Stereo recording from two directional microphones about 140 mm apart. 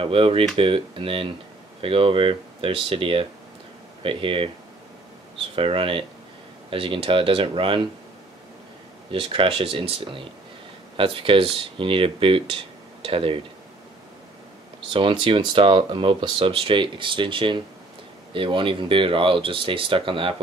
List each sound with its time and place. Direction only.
0.0 s speech: 40° right (ahead or behind)
5.6 s speech: 40° right (ahead or behind)
9.1 s speech: 40° right (ahead or behind)
14.9 s speech: 40° right (ahead or behind)